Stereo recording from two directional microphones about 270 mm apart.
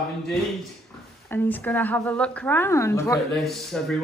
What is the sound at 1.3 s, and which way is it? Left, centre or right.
A woman's voice, centre.